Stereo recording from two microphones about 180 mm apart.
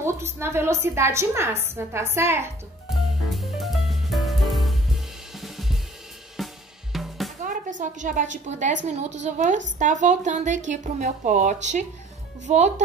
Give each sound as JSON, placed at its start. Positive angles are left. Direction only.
{"t": 0.0, "sound": "a woman's voice", "side_deg": -15}
{"t": 3.3, "sound": "music", "side_deg": 0}
{"t": 5.4, "sound": "drum kit", "side_deg": 0}
{"t": 7.4, "sound": "a woman's voice", "side_deg": -45}